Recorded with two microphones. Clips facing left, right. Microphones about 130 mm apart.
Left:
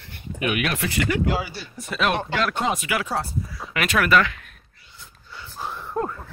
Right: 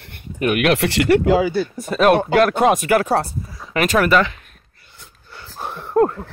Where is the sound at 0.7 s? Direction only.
75° right (ahead or behind).